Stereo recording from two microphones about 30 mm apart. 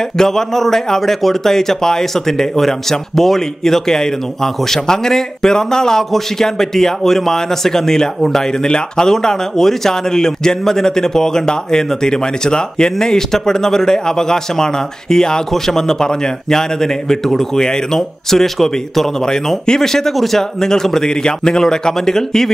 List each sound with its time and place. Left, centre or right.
0.2 s a man's voice: centre
19.2 s a man's voice: left